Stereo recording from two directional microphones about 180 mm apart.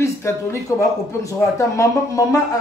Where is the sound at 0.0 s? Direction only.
15° left (ahead or behind).